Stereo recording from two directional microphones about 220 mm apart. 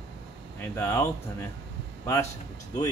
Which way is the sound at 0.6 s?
10° left (ahead or behind).